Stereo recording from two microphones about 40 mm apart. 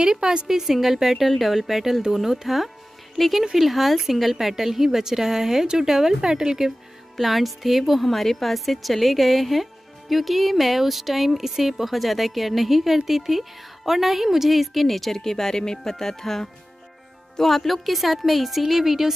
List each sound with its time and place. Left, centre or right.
0.0 s a woman's voice: centre
0.5 s a woman's voice: centre
7.2 s a woman's voice: centre